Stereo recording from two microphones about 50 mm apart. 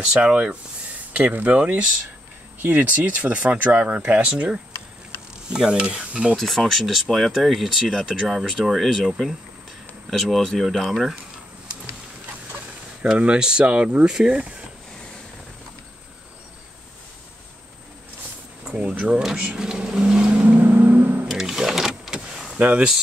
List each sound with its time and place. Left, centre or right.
0.0 s speech: centre
1.1 s speech: right
5.5 s speech: centre
6.3 s speech: centre
13.0 s speech: right
18.6 s speech: centre
20.5 s vehicle: right
21.3 s sewing machine: centre
22.6 s speech: right